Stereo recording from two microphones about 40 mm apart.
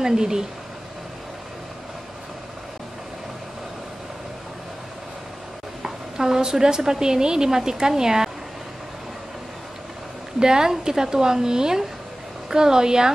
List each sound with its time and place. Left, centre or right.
0.0 s a woman's voice: centre
5.8 s a woman's voice: centre
10.4 s a woman's voice: centre